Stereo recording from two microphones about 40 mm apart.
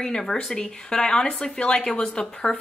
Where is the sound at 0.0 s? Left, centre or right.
Centre.